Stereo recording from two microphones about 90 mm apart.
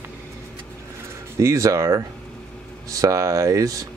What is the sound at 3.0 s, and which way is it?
Speech, 40° right (ahead or behind).